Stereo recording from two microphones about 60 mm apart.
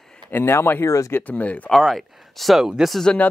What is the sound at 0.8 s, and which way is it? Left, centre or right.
Speech, left.